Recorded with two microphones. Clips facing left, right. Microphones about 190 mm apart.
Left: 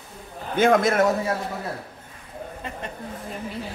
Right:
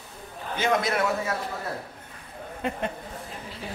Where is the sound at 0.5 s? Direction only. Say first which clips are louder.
Left 7 dB; 50° left (ahead or behind).